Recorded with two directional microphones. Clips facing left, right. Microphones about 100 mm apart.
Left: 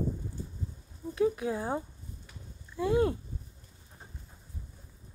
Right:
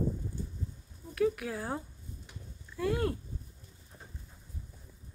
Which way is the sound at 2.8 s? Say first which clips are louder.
Left 4 dB; 20° left (ahead or behind).